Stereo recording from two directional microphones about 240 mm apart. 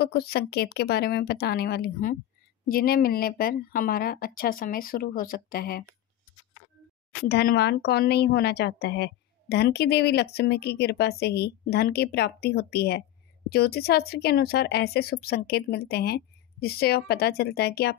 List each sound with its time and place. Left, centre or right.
0.0 s a woman's voice: left
7.2 s a woman's voice: left